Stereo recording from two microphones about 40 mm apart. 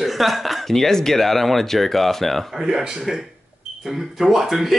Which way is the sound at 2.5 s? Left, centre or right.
Centre.